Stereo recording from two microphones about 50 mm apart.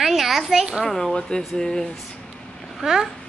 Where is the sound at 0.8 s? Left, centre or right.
Centre.